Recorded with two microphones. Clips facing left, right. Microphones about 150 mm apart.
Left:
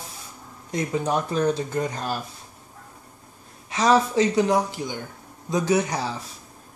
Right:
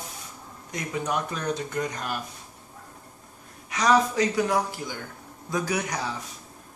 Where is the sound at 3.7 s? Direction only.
25° left (ahead or behind).